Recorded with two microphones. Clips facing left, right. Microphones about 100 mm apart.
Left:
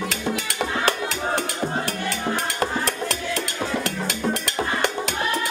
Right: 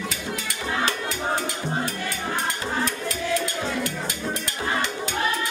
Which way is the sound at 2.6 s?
70° left (ahead or behind).